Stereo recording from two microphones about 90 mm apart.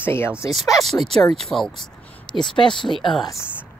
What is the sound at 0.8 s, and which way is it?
Speech, 5° left (ahead or behind).